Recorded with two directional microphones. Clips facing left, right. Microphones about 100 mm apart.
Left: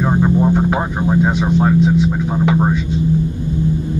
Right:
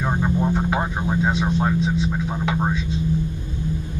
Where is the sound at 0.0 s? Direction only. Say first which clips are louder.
Left 7 dB; 20° left (ahead or behind).